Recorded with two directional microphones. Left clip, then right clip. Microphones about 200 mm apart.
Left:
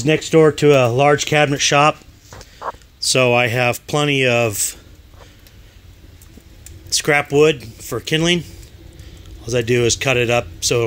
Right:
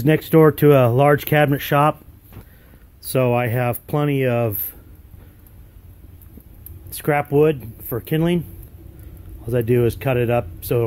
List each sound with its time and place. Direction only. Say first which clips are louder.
0.0 s speech: left 1 dB; 15° right (ahead or behind)
3.0 s speech: left 5 dB; 5° left (ahead or behind)
6.9 s speech: left 4 dB; 5° left (ahead or behind)